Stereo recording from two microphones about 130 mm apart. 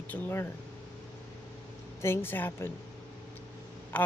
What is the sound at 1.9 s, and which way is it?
Speech, 20° left (ahead or behind).